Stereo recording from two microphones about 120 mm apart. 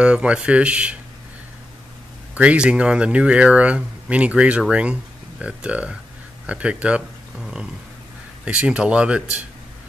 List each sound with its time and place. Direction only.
0.0 s speech: 10° right (ahead or behind)
2.3 s speech: 10° right (ahead or behind)